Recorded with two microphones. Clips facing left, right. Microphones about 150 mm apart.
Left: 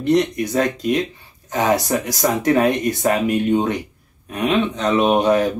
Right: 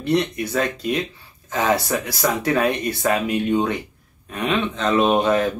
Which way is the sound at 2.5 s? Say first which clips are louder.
Left 4 dB; 20° left (ahead or behind).